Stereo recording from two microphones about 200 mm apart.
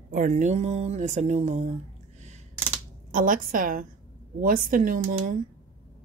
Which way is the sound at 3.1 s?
45° right (ahead or behind).